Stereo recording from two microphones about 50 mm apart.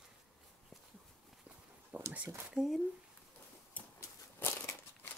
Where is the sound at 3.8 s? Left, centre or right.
Left.